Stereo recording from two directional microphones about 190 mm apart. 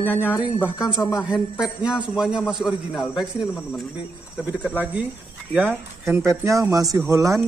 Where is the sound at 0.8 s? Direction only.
25° left (ahead or behind).